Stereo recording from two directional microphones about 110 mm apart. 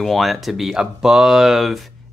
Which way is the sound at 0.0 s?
Centre (ahead or behind).